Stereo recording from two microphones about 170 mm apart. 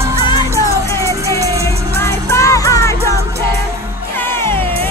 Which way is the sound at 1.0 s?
20° right (ahead or behind).